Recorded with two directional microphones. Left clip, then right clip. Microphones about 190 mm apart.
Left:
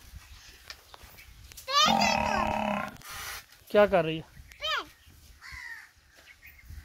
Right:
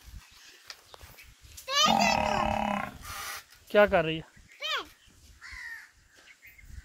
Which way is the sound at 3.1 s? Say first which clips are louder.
Right 1 dB; 40° right (ahead or behind).